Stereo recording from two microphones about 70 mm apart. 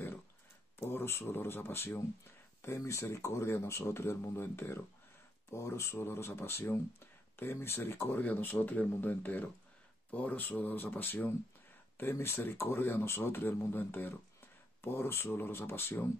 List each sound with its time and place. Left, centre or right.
0.7 s speech: left